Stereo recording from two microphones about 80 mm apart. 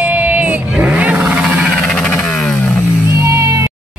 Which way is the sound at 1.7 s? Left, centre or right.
Centre.